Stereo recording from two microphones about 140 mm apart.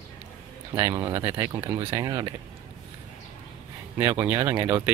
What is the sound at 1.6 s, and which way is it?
Speech, 35° right (ahead or behind).